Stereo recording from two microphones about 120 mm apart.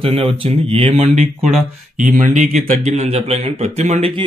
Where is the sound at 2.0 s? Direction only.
85° right.